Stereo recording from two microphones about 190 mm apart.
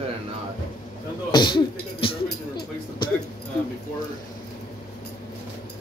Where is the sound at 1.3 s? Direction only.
25° left (ahead or behind).